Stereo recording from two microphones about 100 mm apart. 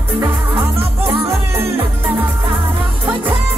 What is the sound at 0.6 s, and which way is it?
Music, 60° right (ahead or behind).